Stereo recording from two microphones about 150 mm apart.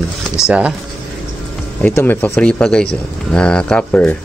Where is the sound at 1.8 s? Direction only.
15° left (ahead or behind).